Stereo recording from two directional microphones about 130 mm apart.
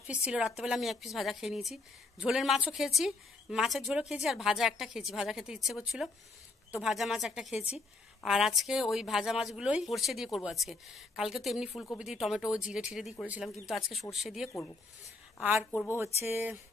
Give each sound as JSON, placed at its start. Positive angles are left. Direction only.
{"t": 0.0, "sound": "a woman's voice", "side_deg": -10}
{"t": 16.3, "sound": "a woman's voice", "side_deg": -15}